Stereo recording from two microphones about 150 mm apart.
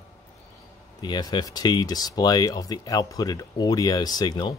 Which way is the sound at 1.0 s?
25° left (ahead or behind).